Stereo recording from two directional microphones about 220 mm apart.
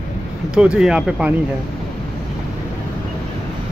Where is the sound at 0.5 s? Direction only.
5° right (ahead or behind).